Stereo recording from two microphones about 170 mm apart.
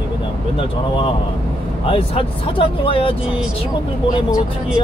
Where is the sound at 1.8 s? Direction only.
30° left (ahead or behind).